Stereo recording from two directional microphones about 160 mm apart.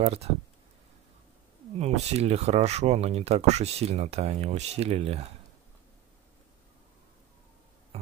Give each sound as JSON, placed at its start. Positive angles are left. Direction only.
{"t": 0.0, "sound": "speech", "side_deg": -40}
{"t": 1.8, "sound": "speech", "side_deg": -40}